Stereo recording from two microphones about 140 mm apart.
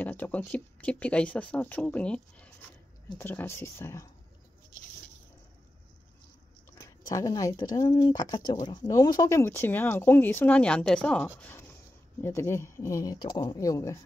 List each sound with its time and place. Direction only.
0.0 s speech: 15° left (ahead or behind)
7.1 s speech: 25° left (ahead or behind)